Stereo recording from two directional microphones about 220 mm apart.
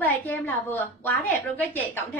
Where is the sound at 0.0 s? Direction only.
10° left (ahead or behind).